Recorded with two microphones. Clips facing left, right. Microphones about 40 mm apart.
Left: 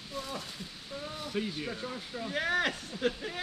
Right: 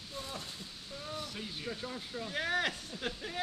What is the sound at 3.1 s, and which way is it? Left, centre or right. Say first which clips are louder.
Speech: left 6 dB; centre.